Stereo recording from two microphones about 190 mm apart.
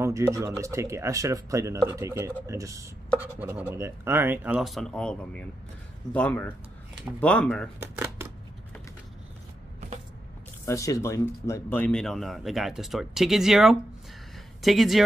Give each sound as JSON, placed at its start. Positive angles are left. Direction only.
{"t": 0.0, "sound": "speech", "side_deg": -15}
{"t": 7.8, "sound": "speech", "side_deg": -15}
{"t": 10.6, "sound": "speech", "side_deg": 15}